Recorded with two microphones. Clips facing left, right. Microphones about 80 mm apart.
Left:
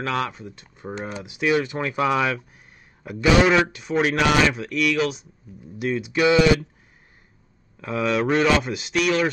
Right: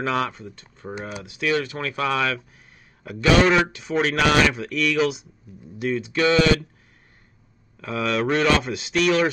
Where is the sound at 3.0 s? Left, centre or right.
Centre.